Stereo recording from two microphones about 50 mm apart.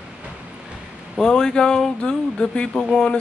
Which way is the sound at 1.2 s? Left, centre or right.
Centre.